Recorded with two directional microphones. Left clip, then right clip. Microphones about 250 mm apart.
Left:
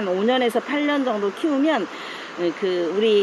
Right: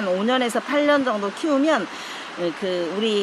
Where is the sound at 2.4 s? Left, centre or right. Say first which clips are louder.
Left 2 dB; right.